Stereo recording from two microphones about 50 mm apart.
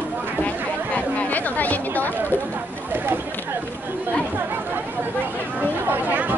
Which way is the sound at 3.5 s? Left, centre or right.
Right.